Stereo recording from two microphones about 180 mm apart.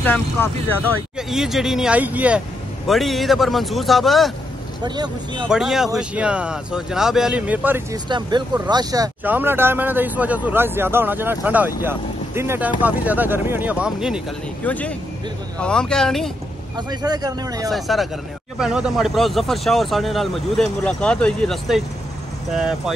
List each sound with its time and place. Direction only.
0.0 s speech: 10° left (ahead or behind)
1.1 s speech: 5° right (ahead or behind)
4.8 s speech: 25° right (ahead or behind)
5.5 s speech: centre (ahead or behind)
7.9 s speech: 25° right (ahead or behind); by 14.2 s 5° right (ahead or behind)
14.6 s speech: 10° left (ahead or behind)
16.7 s speech: 25° right (ahead or behind)
17.6 s speech: centre (ahead or behind)